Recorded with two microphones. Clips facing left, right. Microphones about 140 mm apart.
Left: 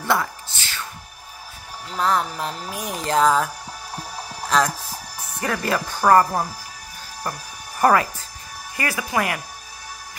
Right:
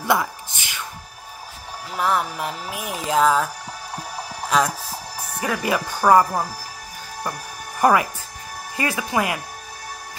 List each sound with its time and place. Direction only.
0.0 s music: 15° right (ahead or behind)
1.9 s speech: 10° right (ahead or behind)
4.5 s speech: 5° right (ahead or behind)
7.8 s speech: 15° right (ahead or behind)